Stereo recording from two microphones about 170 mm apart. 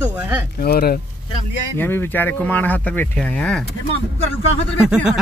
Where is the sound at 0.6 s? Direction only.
65° left (ahead or behind).